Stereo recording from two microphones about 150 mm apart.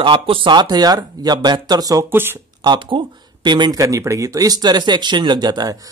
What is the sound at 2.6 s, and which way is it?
Speech, 30° right (ahead or behind).